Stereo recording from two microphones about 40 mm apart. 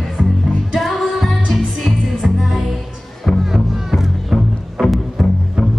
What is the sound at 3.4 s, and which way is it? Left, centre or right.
Music, centre.